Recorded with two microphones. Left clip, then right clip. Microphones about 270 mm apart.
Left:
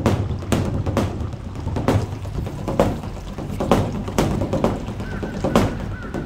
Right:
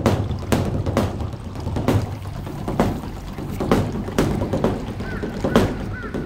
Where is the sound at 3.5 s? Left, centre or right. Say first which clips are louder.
Left 1 dB; left.